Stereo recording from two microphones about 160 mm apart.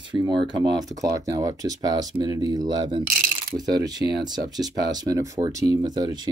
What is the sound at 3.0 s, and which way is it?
Coin, 55° right (ahead or behind).